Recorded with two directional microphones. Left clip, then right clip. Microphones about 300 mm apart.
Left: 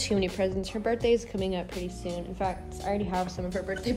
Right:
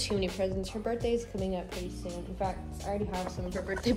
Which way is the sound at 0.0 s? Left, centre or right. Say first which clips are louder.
Left 3 dB; left.